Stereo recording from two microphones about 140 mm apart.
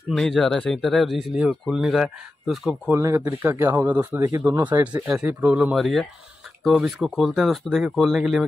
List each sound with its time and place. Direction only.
0.1 s speech: 5° left (ahead or behind)
2.9 s speech: 20° right (ahead or behind); by 8.5 s centre (ahead or behind)